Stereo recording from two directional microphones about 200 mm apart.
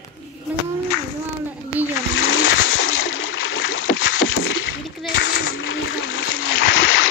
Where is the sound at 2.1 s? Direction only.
75° left (ahead or behind).